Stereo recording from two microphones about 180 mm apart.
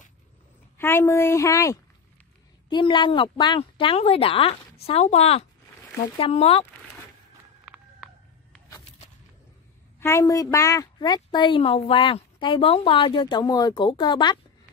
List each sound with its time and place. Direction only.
0.7 s a woman's voice: 10° left (ahead or behind); by 6.6 s 30° left (ahead or behind)
7.6 s a sound: 5° right (ahead or behind)
9.9 s a woman's voice: 15° left (ahead or behind)